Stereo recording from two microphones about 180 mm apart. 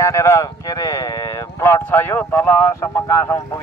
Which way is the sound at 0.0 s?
15° left (ahead or behind).